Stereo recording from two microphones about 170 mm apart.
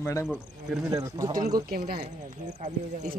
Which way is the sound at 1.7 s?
60° right (ahead or behind).